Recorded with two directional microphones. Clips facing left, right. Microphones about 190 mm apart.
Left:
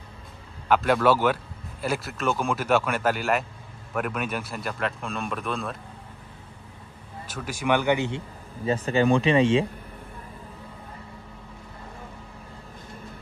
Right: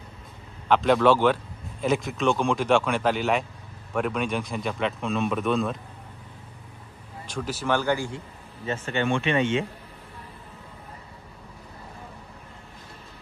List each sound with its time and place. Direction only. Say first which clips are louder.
0.7 s a man's voice: right 1 dB; 5° left (ahead or behind)
7.2 s speech: left 1 dB; 10° left (ahead or behind)
8.6 s speech: left 5 dB; 35° left (ahead or behind)